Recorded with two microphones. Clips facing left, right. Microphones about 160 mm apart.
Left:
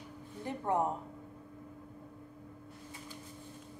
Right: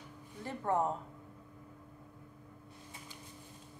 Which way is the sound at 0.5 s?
15° left (ahead or behind).